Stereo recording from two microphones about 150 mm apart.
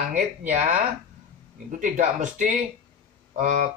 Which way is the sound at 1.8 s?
55° right (ahead or behind).